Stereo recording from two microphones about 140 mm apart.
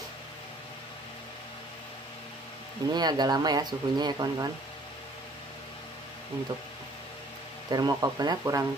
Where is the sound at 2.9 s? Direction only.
30° right (ahead or behind).